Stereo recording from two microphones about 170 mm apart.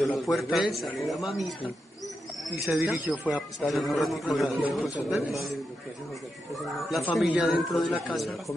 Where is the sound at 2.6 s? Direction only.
Centre (ahead or behind).